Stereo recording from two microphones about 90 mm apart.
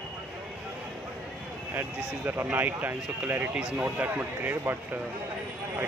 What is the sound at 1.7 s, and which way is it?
Speech, 20° right (ahead or behind).